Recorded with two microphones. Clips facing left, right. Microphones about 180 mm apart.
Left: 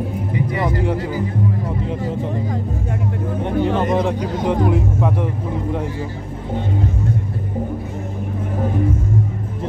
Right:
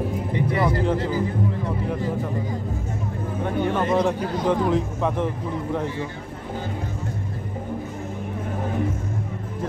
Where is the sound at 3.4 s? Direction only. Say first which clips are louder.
Left 4 dB; 20° left (ahead or behind).